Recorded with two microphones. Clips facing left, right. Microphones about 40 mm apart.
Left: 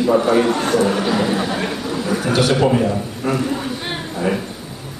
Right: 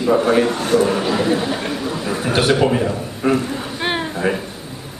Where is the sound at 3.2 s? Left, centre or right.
Right.